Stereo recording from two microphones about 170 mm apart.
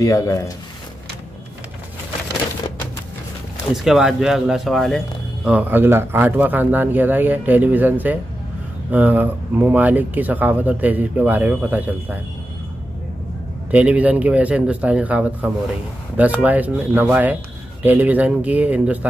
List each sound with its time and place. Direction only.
0.0 s speech: 20° left (ahead or behind)
3.7 s speech: centre (ahead or behind)
13.7 s speech: 10° right (ahead or behind)